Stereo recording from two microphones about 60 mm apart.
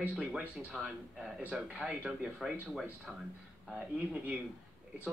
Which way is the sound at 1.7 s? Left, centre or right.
Centre.